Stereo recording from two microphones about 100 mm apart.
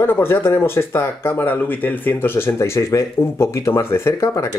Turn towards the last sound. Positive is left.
turn(degrees=30)  # may be behind; listen again after turning